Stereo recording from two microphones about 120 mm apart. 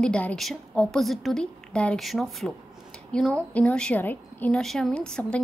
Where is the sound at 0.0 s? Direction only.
10° left (ahead or behind).